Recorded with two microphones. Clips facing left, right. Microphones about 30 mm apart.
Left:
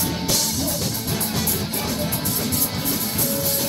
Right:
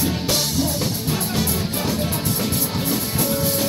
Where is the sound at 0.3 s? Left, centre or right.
Right.